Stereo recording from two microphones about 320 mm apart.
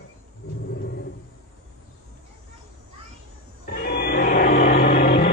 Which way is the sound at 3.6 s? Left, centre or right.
Left.